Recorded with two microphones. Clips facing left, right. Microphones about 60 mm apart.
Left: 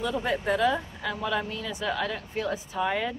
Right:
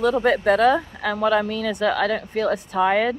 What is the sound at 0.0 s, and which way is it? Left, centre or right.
Speech, right.